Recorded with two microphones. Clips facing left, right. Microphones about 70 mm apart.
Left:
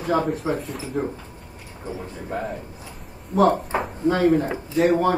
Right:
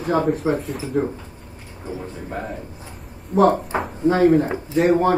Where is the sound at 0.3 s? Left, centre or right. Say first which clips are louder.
Right 4 dB; right.